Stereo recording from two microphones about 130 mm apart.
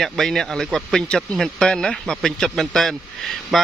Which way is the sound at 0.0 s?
5° left (ahead or behind).